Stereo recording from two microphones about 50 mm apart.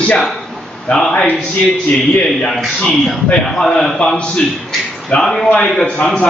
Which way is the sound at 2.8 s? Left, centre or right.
Centre.